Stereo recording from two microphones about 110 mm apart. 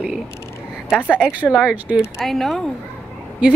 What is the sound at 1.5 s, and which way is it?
A woman's voice, 5° right (ahead or behind).